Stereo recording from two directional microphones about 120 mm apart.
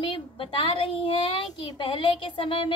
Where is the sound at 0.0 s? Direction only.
45° left (ahead or behind).